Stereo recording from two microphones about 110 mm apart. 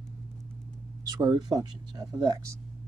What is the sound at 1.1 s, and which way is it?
Speech, 35° right (ahead or behind).